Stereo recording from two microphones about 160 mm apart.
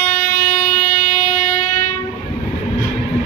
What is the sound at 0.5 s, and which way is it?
Train, 55° left (ahead or behind).